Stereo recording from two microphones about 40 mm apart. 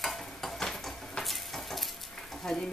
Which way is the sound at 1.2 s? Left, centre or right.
Centre.